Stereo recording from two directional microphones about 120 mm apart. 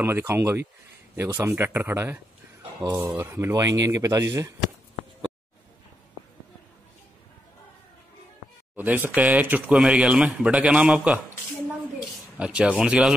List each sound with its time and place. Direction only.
0.0 s speech: 20° right (ahead or behind)
8.7 s speech: 15° right (ahead or behind)
12.4 s speech: 10° right (ahead or behind)